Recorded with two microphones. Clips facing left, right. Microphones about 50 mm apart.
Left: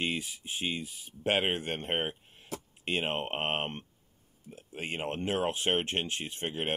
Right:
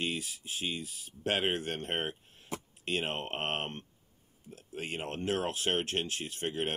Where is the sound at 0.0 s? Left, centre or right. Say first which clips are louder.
Left 2 dB; left.